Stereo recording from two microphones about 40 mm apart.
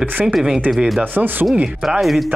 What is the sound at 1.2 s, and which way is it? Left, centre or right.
Rub, right.